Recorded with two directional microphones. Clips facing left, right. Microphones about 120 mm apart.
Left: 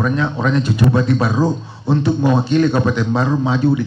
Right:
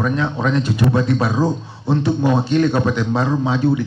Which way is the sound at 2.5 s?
15° right (ahead or behind).